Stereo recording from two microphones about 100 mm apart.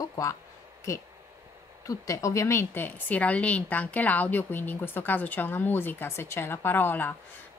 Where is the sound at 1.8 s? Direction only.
35° left (ahead or behind).